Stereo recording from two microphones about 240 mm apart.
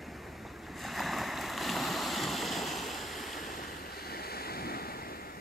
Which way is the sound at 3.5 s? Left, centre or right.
Left.